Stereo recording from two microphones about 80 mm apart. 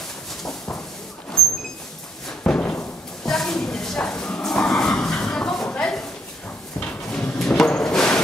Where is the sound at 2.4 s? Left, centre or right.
Centre.